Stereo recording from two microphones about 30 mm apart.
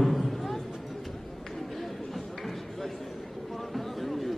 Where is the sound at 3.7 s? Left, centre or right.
Centre.